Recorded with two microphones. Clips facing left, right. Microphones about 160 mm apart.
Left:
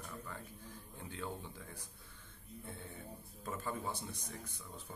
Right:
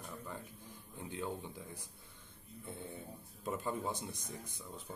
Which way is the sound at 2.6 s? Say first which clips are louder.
Right 4 dB; 15° right (ahead or behind).